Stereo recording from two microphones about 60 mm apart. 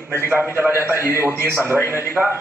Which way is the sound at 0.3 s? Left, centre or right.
Right.